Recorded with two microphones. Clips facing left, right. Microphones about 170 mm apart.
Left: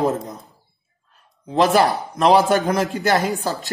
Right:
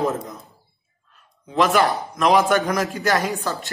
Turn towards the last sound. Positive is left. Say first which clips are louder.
# left 2 dB
turn(degrees=35)  # may be behind; listen again after turning